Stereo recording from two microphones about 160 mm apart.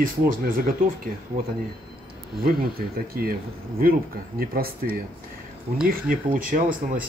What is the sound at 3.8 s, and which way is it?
Speech, 65° right (ahead or behind).